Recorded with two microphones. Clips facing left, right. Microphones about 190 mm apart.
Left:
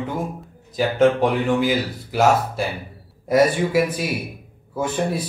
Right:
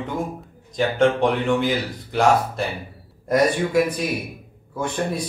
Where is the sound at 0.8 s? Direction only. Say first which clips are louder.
Left 2 dB; 5° left (ahead or behind).